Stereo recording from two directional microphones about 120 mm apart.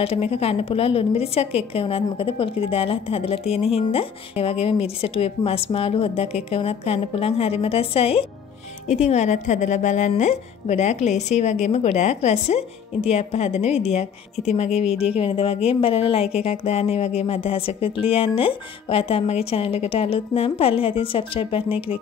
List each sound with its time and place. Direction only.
0.0 s a woman's voice: 55° left (ahead or behind)
8.8 s a woman's voice: 65° left (ahead or behind)
15.1 s a woman's voice: 50° left (ahead or behind)